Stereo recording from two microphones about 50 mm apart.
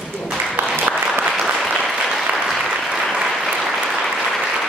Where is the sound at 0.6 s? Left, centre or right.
Right.